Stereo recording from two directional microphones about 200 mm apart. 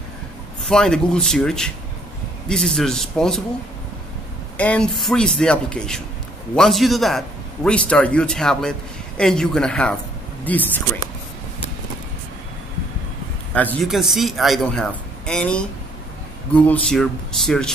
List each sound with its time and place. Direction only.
0.7 s a man's voice: 5° left (ahead or behind)
4.6 s a man's voice: 5° left (ahead or behind)
13.5 s a man's voice: 5° left (ahead or behind)